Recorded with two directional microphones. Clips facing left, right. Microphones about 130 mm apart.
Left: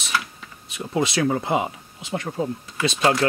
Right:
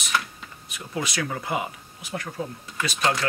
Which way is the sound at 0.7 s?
25° left (ahead or behind).